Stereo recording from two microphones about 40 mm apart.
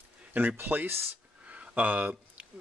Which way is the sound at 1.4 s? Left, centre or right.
Right.